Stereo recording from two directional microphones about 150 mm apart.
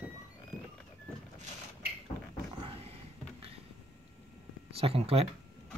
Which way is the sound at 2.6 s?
40° right (ahead or behind).